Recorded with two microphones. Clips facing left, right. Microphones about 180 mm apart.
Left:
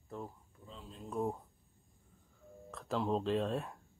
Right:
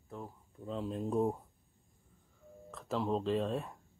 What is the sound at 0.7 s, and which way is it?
Speech, 60° right (ahead or behind).